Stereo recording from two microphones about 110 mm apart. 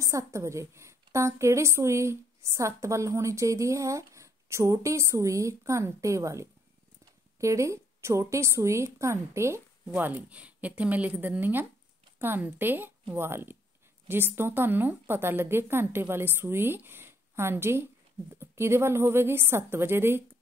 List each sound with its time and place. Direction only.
0.0 s a woman's voice: 30° right (ahead or behind)